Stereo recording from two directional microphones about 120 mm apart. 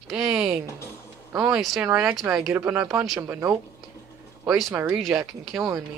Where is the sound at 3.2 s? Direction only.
25° right (ahead or behind).